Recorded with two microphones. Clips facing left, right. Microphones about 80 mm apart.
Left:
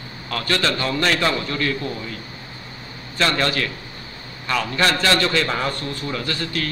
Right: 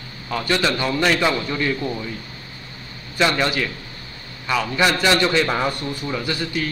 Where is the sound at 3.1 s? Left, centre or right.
Centre.